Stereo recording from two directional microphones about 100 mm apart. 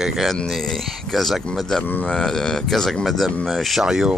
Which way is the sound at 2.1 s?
5° left (ahead or behind).